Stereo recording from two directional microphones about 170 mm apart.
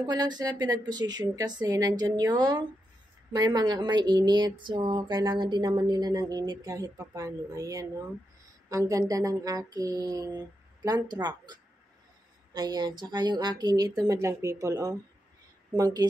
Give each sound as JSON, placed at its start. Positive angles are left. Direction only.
{"t": 0.0, "sound": "speech", "side_deg": -25}
{"t": 12.5, "sound": "speech", "side_deg": -25}